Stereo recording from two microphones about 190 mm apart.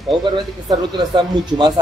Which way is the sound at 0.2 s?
25° right (ahead or behind).